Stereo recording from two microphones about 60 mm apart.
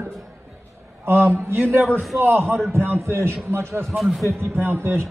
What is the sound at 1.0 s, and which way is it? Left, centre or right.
A man's voice, right.